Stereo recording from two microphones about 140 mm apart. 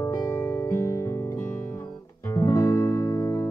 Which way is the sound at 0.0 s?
20° left (ahead or behind).